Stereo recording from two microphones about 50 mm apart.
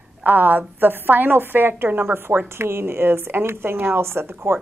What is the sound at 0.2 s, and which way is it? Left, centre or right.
A woman's voice, right.